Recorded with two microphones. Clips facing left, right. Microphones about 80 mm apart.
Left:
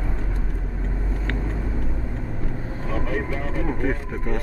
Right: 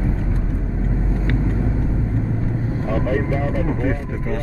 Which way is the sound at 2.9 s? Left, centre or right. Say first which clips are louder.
Right 5 dB; right.